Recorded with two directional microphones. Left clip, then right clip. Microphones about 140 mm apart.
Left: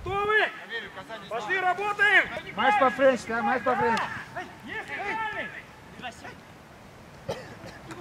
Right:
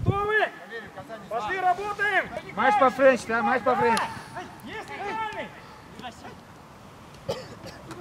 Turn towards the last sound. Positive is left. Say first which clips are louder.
# right 2 dB
turn(degrees=-10)  # may be behind; listen again after turning